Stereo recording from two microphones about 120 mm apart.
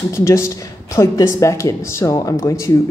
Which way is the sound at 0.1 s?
25° left (ahead or behind).